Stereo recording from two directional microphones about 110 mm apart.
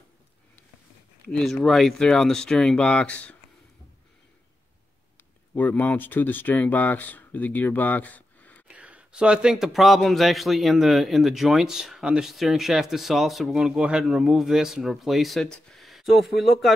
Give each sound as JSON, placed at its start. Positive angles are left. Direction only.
{"t": 1.3, "sound": "speech", "side_deg": 0}
{"t": 5.5, "sound": "speech", "side_deg": 15}
{"t": 8.6, "sound": "speech", "side_deg": -10}